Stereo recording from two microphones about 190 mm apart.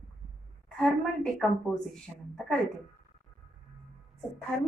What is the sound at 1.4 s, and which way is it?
Speech, centre (ahead or behind).